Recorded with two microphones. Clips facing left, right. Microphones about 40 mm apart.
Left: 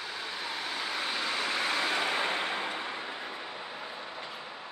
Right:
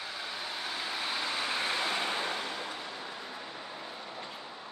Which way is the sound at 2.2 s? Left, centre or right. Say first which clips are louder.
Left 4 dB; left.